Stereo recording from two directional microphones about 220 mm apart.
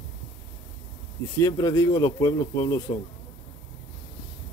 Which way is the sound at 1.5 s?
15° left (ahead or behind).